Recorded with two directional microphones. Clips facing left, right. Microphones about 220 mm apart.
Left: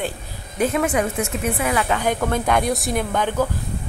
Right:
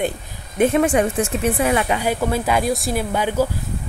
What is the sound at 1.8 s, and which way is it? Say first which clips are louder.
A woman's voice: right 1 dB; 10° right (ahead or behind).